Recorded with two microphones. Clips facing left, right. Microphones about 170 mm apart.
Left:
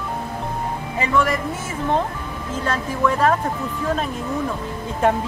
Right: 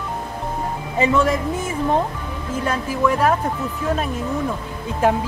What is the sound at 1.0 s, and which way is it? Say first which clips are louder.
Speech: right 3 dB; 20° right (ahead or behind).